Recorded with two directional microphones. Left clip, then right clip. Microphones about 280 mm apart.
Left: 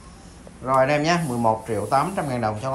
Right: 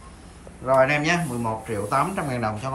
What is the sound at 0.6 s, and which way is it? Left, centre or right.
Speech, centre.